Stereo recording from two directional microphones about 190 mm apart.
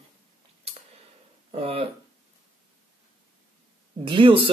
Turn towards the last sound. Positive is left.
turn(degrees=-25)  # may be behind; listen again after turning